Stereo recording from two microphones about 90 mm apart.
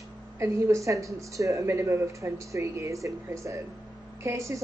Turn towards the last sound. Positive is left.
turn(degrees=-35)  # may be behind; listen again after turning